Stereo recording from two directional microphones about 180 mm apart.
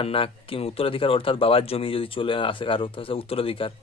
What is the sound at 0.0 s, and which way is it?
Speech, 30° left (ahead or behind).